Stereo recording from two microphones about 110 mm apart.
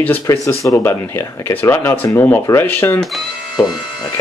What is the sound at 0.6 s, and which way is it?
Speech, 30° left (ahead or behind).